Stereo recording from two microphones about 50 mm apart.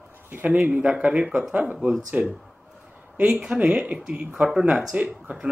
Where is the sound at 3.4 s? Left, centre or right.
Right.